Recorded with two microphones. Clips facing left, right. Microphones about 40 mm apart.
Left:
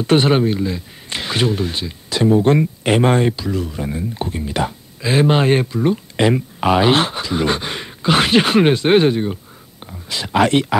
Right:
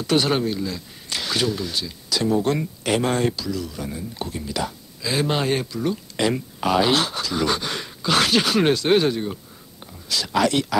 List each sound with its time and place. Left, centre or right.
0.0 s speech: left